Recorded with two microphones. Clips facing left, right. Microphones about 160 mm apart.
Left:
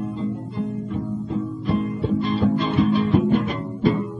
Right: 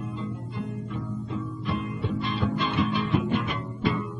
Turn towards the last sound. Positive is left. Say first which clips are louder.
# left 7 dB
turn(degrees=40)  # may be behind; listen again after turning